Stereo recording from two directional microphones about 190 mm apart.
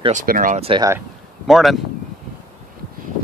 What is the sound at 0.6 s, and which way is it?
Speech, 30° right (ahead or behind).